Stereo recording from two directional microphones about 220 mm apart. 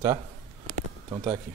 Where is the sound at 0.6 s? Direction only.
15° right (ahead or behind).